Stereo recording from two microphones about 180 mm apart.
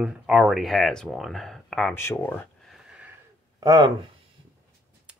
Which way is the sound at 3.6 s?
20° right (ahead or behind).